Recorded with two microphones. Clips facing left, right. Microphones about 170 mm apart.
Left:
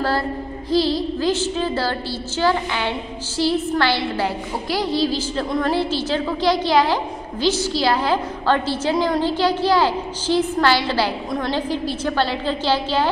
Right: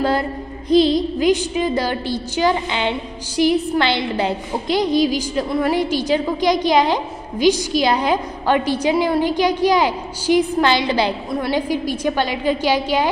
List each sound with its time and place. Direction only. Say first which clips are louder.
0.7 s a woman's voice: right 5 dB; 20° right (ahead or behind)